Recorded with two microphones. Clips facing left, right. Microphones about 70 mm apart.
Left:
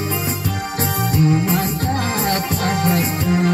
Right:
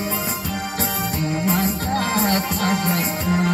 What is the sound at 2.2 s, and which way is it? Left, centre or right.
Music, centre.